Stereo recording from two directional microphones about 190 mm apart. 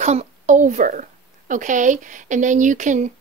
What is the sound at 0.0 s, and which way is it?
Speech, 35° right (ahead or behind).